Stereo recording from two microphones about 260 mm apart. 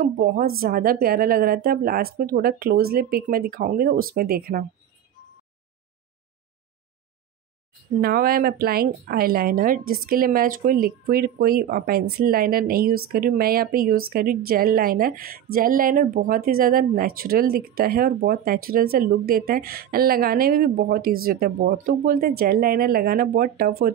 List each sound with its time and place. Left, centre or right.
0.0 s speech: right
8.0 s speech: right